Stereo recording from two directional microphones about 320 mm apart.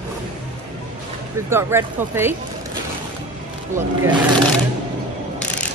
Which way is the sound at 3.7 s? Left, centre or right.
Centre.